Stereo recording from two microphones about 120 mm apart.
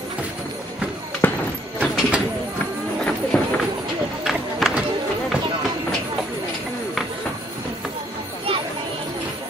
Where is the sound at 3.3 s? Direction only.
10° left (ahead or behind).